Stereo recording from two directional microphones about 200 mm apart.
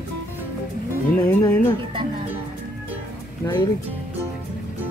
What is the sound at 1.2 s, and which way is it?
Speech, 10° left (ahead or behind).